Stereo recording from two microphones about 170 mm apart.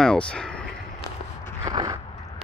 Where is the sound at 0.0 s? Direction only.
5° left (ahead or behind).